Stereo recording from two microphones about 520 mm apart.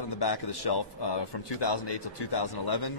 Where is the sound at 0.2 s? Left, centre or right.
Left.